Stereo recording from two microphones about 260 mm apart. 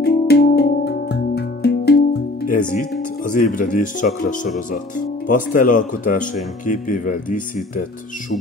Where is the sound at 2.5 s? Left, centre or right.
Left.